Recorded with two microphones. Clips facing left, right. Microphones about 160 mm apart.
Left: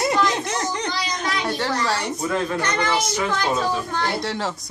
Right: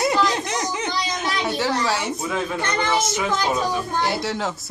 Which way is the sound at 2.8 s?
25° right (ahead or behind).